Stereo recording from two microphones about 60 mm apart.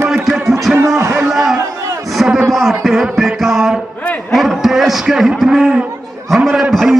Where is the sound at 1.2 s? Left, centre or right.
Centre.